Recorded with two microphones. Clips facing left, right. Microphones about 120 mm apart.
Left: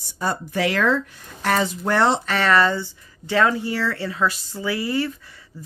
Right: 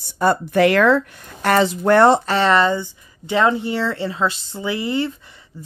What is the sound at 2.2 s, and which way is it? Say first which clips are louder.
Speech: right 3 dB; 30° right (ahead or behind).